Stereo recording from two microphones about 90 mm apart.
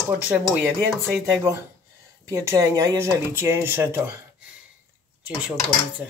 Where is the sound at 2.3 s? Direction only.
35° right (ahead or behind).